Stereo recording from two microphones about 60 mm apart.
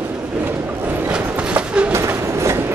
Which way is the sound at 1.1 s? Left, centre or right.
Centre.